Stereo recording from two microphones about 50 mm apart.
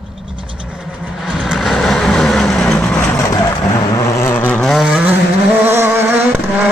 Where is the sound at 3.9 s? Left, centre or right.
Left.